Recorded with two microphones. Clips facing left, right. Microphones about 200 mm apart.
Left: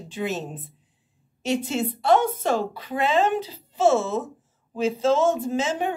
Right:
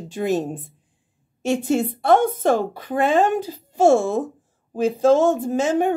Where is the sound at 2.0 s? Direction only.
50° right (ahead or behind).